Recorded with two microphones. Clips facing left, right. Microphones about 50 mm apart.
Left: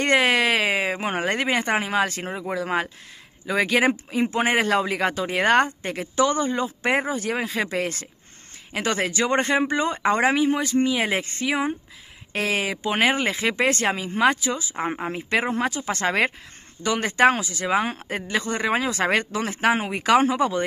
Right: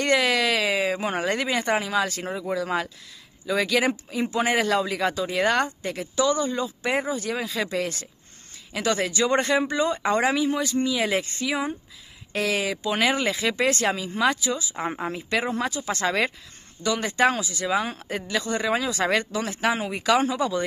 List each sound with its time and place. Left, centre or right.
0.0 s a woman's voice: left